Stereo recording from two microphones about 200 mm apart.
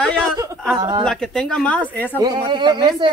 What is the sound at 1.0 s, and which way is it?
Speech, 5° left (ahead or behind).